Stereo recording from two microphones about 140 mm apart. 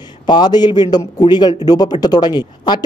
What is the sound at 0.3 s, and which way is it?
A man's voice, 30° left (ahead or behind).